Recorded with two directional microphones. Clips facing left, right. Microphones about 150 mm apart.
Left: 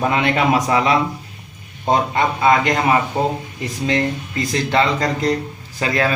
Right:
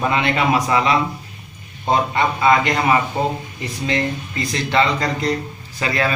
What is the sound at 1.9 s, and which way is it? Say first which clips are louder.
Speech: left 1 dB; 40° left (ahead or behind).